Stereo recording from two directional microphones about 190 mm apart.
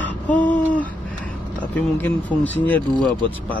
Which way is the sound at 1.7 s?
10° left (ahead or behind).